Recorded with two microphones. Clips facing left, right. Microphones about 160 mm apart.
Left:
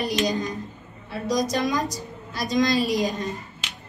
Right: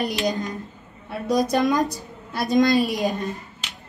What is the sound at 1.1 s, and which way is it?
Speech, 55° right (ahead or behind).